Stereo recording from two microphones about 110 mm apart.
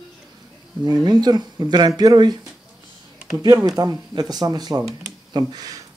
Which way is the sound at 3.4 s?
30° right (ahead or behind).